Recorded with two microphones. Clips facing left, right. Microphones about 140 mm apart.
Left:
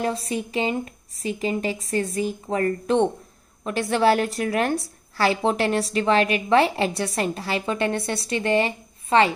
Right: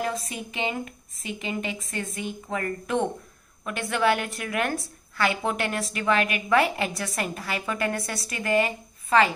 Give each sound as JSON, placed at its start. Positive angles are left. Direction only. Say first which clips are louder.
{"t": 0.0, "sound": "a woman's voice", "louder": "left 5 dB", "side_deg": 30}